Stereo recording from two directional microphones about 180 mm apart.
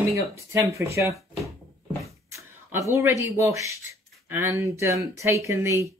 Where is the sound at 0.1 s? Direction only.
15° right (ahead or behind).